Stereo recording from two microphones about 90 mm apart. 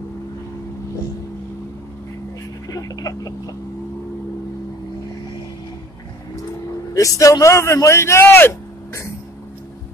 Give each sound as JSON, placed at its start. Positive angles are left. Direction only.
{"t": 2.7, "sound": "speech", "side_deg": 40}
{"t": 6.9, "sound": "a man's voice", "side_deg": 35}